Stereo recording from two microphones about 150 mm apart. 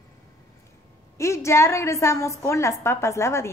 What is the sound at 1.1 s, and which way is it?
A woman's voice, 20° left (ahead or behind).